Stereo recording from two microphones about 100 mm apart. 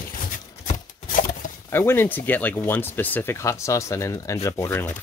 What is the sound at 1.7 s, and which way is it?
Speech, 25° left (ahead or behind).